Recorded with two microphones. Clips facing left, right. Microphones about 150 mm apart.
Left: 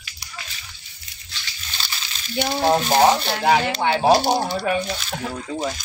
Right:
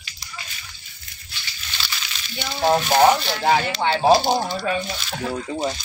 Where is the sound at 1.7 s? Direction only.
35° left (ahead or behind).